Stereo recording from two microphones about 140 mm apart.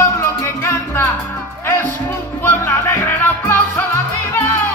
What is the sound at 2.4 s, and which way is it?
Music, 15° left (ahead or behind).